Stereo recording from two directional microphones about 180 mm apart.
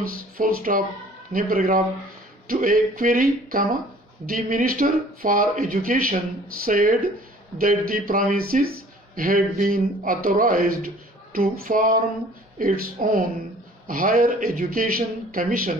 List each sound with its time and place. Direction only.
0.4 s speech: 50° right (ahead or behind)